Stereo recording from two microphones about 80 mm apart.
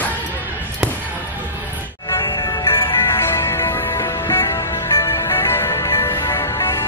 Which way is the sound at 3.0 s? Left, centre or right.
Left.